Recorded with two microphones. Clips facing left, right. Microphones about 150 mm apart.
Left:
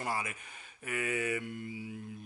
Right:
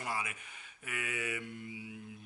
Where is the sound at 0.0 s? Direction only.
40° left (ahead or behind).